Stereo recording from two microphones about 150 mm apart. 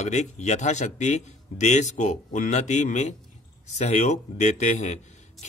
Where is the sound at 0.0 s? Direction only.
50° left (ahead or behind).